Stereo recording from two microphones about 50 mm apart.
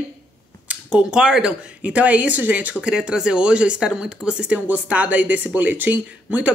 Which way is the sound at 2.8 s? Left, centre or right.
Centre.